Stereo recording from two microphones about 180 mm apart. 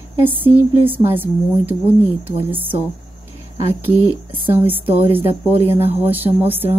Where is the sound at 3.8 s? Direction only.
10° right (ahead or behind).